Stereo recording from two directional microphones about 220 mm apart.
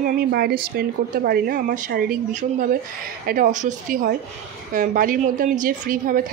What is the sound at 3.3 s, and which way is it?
A woman's voice, 35° right (ahead or behind).